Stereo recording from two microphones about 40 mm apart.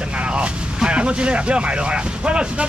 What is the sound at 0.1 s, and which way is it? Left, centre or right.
Speech, right.